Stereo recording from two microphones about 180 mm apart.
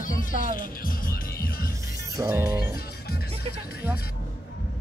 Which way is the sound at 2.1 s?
20° right (ahead or behind).